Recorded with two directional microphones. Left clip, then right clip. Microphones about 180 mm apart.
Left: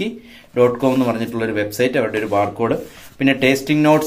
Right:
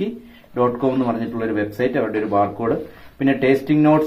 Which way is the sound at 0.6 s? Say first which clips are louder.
Left 4 dB; 40° left (ahead or behind).